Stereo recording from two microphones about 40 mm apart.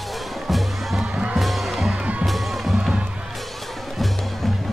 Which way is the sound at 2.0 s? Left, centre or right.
Right.